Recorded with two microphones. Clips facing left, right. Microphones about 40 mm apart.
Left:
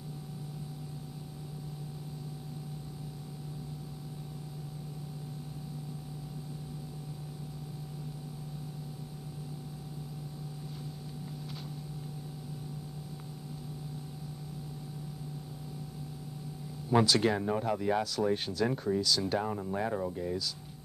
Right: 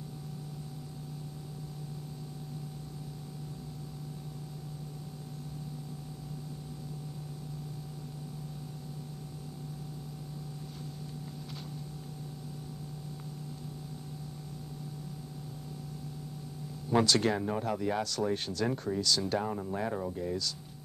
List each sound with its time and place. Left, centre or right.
16.9 s speech: centre